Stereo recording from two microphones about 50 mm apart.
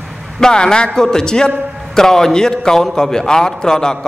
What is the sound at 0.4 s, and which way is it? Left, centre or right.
A man's voice, centre.